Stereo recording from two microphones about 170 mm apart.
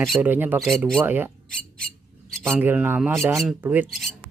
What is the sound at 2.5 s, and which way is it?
Speech, 10° right (ahead or behind).